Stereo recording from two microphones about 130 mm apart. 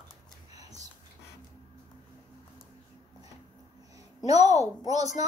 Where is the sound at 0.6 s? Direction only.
30° right (ahead or behind).